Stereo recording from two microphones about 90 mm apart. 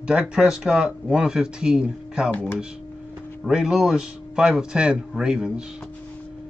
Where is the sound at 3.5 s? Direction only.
10° right (ahead or behind).